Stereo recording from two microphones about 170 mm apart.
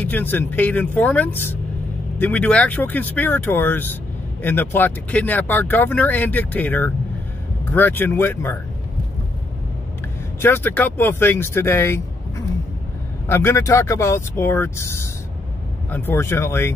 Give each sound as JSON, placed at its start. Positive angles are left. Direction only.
{"t": 0.0, "sound": "speech", "side_deg": 10}
{"t": 10.4, "sound": "speech", "side_deg": 10}
{"t": 13.3, "sound": "speech", "side_deg": 15}